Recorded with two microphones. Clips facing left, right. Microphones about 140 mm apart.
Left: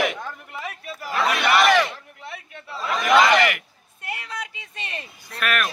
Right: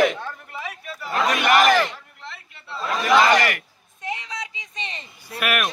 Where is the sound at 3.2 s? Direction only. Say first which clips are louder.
Even; 40° right (ahead or behind).